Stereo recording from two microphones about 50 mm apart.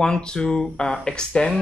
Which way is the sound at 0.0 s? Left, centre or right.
Centre.